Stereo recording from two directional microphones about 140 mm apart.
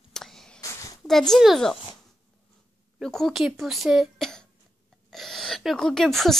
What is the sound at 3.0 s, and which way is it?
Speech, centre (ahead or behind).